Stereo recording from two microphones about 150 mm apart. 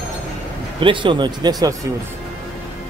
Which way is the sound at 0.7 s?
35° right (ahead or behind).